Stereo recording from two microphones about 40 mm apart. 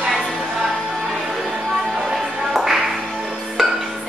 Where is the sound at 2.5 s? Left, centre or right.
Centre.